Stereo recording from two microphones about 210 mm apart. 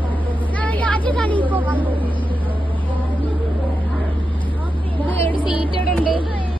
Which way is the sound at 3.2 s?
25° right (ahead or behind).